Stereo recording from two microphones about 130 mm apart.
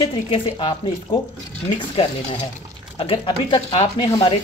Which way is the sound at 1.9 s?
45° left (ahead or behind).